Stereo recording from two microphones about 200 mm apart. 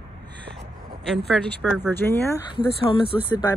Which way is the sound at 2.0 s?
10° left (ahead or behind).